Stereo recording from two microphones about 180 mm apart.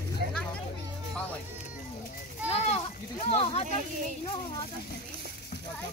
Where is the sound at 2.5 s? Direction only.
35° left (ahead or behind).